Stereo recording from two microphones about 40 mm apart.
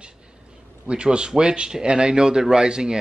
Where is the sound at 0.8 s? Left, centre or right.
Right.